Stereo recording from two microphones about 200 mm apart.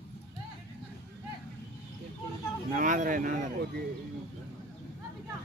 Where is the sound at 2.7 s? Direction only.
40° right (ahead or behind).